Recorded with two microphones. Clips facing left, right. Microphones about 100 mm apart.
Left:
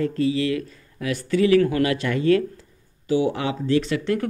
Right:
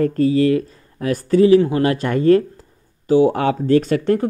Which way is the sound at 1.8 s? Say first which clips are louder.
Right 5 dB; 40° right (ahead or behind).